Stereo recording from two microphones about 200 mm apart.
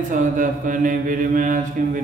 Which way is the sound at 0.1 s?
40° right (ahead or behind).